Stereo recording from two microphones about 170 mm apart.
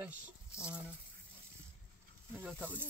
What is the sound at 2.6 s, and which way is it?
Speech, 10° right (ahead or behind).